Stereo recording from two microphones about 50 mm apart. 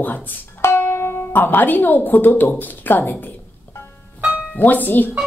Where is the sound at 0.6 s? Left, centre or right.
Left.